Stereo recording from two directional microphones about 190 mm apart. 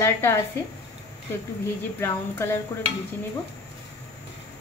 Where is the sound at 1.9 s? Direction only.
15° left (ahead or behind).